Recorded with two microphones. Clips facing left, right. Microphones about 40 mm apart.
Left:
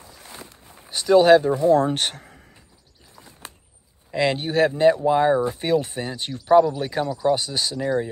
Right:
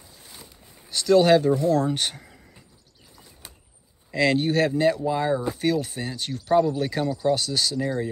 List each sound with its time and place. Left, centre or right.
0.7 s a sound: left
1.1 s speech: centre
1.8 s speech: left
4.1 s speech: centre
4.8 s speech: left
6.6 s speech: centre